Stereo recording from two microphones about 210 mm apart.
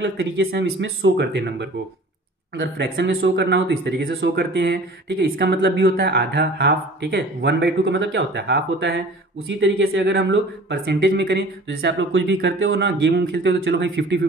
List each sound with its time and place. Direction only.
0.0 s speech: 60° right (ahead or behind)
9.5 s speech: 65° right (ahead or behind)